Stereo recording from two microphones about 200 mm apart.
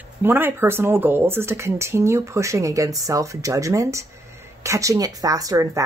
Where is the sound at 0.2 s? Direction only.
10° right (ahead or behind).